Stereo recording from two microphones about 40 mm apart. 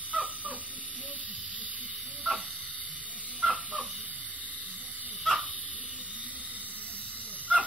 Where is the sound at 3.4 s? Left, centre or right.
Right.